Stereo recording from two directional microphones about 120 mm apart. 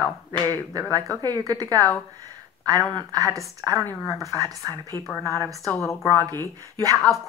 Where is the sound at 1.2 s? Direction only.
35° right (ahead or behind).